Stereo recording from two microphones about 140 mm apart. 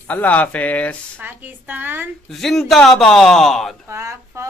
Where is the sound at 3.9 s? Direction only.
20° right (ahead or behind).